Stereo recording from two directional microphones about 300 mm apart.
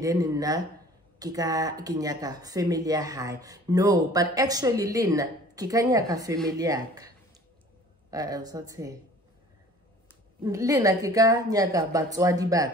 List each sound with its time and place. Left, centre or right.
0.0 s speech: centre
8.1 s speech: centre
10.4 s speech: centre